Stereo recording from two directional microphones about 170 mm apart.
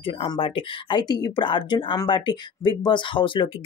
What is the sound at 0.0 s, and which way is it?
Speech, 30° left (ahead or behind).